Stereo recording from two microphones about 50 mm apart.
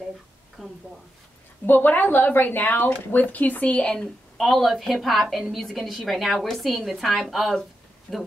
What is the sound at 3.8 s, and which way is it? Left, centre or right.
Speech, centre.